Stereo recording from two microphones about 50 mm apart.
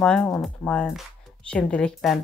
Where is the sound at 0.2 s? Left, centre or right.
Centre.